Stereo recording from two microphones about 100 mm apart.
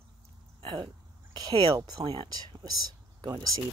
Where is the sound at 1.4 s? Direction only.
40° right (ahead or behind).